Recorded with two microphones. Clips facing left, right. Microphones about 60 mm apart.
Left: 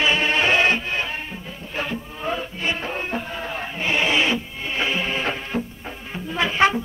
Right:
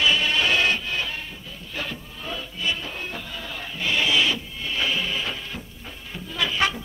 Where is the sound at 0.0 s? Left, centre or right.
Left.